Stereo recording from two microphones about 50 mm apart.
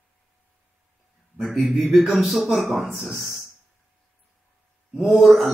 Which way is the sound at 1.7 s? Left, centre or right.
Centre.